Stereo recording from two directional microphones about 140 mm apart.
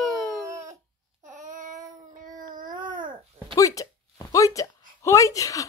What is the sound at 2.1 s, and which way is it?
Baby cry, 70° right (ahead or behind).